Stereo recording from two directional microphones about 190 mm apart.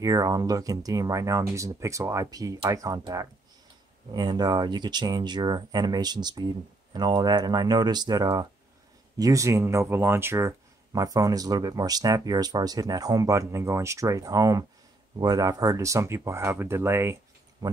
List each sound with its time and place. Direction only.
0.0 s speech: 20° right (ahead or behind)